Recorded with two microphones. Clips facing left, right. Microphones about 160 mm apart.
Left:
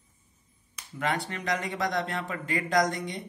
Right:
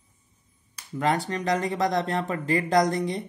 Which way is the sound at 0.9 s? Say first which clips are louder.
Right 5 dB; 40° right (ahead or behind).